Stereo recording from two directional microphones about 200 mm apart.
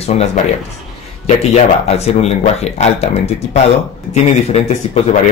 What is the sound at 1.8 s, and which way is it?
Speech, 30° left (ahead or behind).